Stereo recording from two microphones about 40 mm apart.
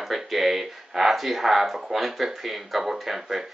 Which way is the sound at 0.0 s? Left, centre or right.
Centre.